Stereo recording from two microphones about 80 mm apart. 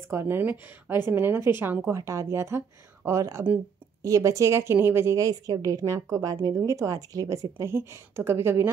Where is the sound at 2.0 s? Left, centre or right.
Right.